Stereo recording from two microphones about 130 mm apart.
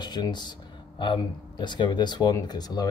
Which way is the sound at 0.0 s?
35° left (ahead or behind).